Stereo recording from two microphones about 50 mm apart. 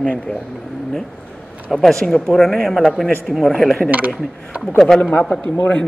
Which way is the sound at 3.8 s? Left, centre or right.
Right.